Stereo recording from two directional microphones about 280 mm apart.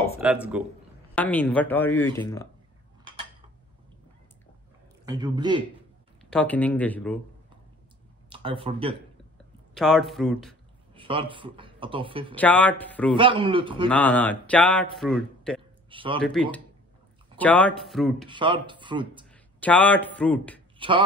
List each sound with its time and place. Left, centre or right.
0.2 s a man's voice: centre
1.1 s speech: centre
5.0 s speech: centre
6.3 s a man's voice: centre
8.3 s speech: centre
9.8 s a man's voice: centre
11.0 s speech: centre
12.4 s a man's voice: centre
13.1 s speech: centre
13.8 s a man's voice: centre
15.9 s a sound: centre
16.2 s a man's voice: centre
18.3 s speech: centre
19.3 s speech: centre